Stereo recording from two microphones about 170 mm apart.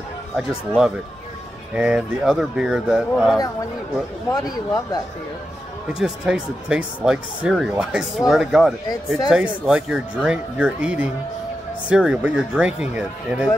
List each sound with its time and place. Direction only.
0.4 s speech: 5° right (ahead or behind)
4.3 s speech: 20° left (ahead or behind)
5.9 s speech: 5° right (ahead or behind)